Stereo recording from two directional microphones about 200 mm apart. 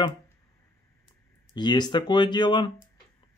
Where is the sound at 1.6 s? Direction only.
20° left (ahead or behind).